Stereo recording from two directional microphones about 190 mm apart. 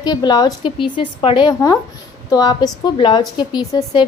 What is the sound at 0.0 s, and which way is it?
A woman's voice, 20° left (ahead or behind).